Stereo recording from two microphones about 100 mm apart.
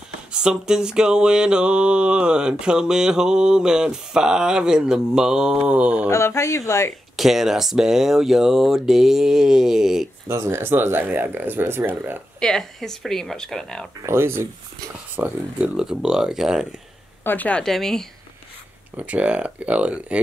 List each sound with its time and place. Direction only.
0.3 s mantra: 10° right (ahead or behind)
6.0 s speech: 30° left (ahead or behind)
7.2 s speech: 5° right (ahead or behind)
10.2 s speech: 25° right (ahead or behind)
12.4 s speech: 5° left (ahead or behind)
14.0 s speech: 25° right (ahead or behind)
15.1 s mantra: 15° right (ahead or behind)
17.2 s speech: 20° left (ahead or behind)
17.6 s speech: 5° left (ahead or behind)
18.9 s mantra: 15° right (ahead or behind)